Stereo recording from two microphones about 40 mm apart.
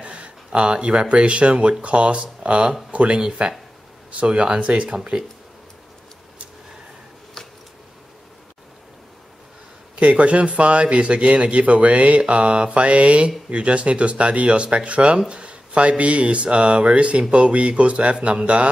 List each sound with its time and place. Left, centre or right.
0.0 s speech: right
7.4 s a sound: centre
9.9 s speech: right